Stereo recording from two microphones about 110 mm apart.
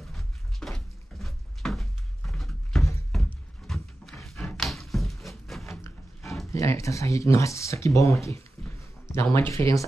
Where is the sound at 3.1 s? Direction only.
Centre (ahead or behind).